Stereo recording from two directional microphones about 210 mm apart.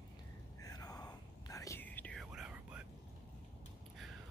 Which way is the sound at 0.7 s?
15° left (ahead or behind).